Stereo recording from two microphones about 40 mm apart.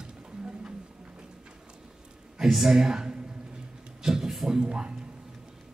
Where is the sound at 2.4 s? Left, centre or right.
Centre.